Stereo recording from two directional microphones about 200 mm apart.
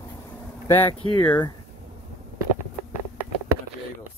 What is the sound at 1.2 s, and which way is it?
Speech, 10° left (ahead or behind).